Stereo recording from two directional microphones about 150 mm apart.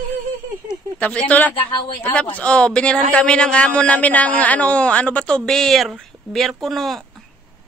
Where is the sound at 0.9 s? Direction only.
10° left (ahead or behind).